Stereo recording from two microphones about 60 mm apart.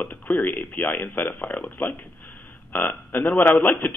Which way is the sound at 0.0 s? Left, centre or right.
Left.